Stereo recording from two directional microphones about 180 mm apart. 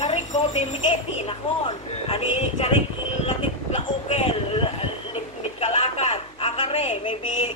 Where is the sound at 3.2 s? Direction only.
30° left (ahead or behind).